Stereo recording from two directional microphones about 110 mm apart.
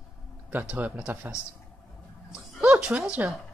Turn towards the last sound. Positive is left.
turn(degrees=-15)  # may be behind; listen again after turning